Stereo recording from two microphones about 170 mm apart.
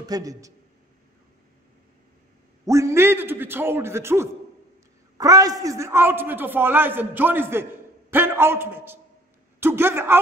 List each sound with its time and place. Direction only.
0.0 s a man's voice: 20° right (ahead or behind)
2.6 s a man's voice: 20° right (ahead or behind)